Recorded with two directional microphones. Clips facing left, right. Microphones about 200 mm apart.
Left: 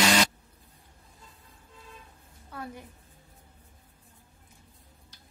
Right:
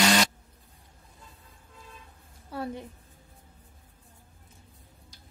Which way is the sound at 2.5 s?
30° right (ahead or behind).